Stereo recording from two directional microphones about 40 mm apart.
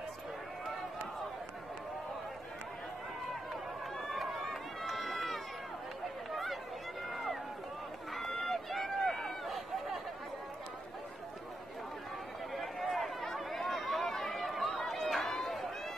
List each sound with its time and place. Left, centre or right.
4.1 s run: centre
12.5 s run: centre